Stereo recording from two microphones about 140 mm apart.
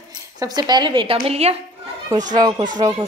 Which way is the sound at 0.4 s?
30° right (ahead or behind).